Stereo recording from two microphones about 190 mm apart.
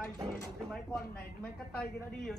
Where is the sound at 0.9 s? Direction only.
5° left (ahead or behind).